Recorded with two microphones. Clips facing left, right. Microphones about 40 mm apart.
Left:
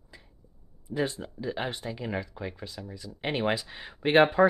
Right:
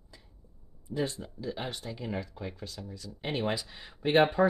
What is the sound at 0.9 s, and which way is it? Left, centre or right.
Speech, left.